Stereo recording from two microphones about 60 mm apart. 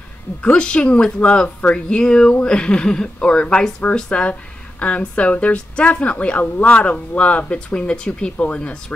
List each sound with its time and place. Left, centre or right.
0.4 s speech: centre